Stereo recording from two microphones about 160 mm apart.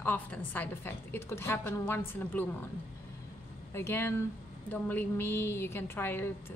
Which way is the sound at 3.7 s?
15° left (ahead or behind).